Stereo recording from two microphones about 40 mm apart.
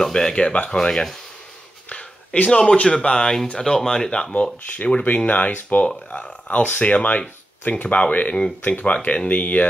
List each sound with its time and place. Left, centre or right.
0.0 s speech: centre
4.7 s speech: left
6.7 s speech: left